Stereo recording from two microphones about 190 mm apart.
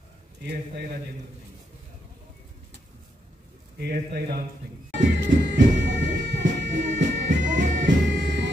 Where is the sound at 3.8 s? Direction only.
55° right (ahead or behind).